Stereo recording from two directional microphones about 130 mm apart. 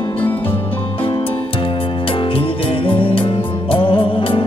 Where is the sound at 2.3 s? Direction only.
45° left (ahead or behind).